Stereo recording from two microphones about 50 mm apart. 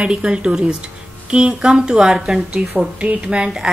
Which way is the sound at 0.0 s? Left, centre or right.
Centre.